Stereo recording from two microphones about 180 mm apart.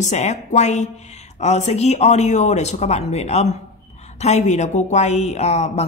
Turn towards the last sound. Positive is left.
turn(degrees=35)  # may be behind; listen again after turning